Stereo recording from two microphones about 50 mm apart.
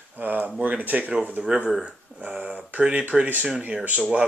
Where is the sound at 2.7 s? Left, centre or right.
Right.